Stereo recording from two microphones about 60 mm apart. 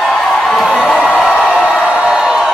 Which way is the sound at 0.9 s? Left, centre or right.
Centre.